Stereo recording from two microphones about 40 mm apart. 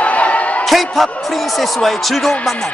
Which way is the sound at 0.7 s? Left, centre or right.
Centre.